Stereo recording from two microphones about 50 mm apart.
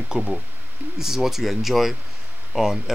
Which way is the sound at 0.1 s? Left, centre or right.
Centre.